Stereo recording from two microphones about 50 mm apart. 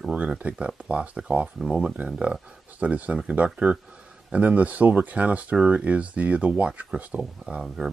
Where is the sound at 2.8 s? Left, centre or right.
Right.